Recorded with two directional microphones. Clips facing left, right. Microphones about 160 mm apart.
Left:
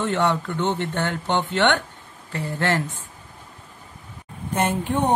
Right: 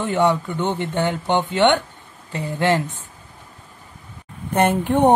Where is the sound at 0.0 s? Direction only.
10° right (ahead or behind).